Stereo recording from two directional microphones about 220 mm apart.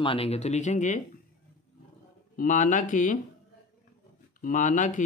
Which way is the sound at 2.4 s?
35° left (ahead or behind).